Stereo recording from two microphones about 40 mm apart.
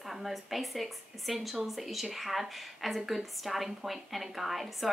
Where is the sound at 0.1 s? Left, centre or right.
Centre.